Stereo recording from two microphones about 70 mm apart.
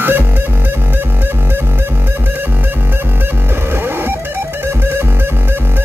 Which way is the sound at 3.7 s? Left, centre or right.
Right.